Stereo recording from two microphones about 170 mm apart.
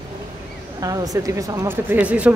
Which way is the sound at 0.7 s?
20° right (ahead or behind).